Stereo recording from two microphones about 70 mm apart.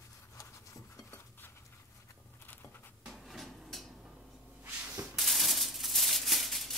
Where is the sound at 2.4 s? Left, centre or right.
Left.